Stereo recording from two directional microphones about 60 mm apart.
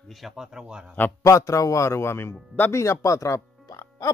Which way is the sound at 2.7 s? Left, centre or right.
Left.